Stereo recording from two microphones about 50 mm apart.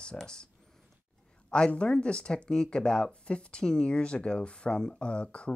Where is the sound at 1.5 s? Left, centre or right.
Centre.